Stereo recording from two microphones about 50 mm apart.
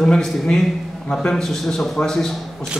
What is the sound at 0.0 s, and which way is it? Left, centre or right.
A man's voice, centre.